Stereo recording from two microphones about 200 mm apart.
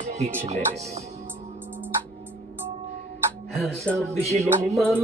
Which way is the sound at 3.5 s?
Centre (ahead or behind).